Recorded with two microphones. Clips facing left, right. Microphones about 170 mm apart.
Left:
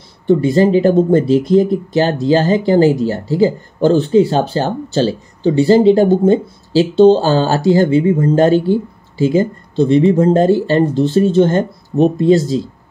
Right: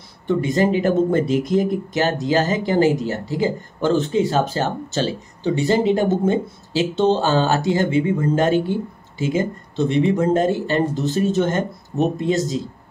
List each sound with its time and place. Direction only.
0.3 s speech: 30° left (ahead or behind)